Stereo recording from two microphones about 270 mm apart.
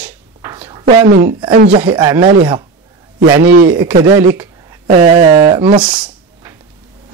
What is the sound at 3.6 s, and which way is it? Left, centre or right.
Speech, centre.